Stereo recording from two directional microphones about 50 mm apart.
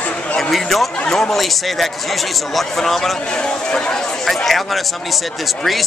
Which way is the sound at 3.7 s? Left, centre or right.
Centre.